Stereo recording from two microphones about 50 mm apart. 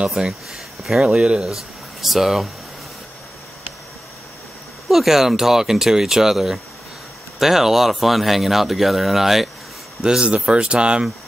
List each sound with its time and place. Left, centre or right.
0.0 s speech: centre
0.3 s a sound: centre
1.0 s speech: centre
1.5 s speech: centre
4.8 s speech: centre
10.0 s speech: centre